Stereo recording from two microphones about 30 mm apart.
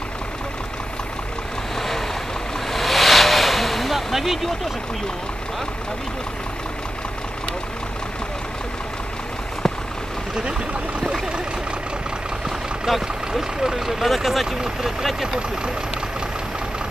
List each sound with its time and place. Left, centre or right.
1.8 s boat: centre
2.7 s a sound: centre
10.4 s vehicle: right
12.4 s speech: centre
14.6 s speech: centre